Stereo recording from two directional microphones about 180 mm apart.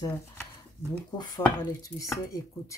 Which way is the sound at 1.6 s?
20° left (ahead or behind).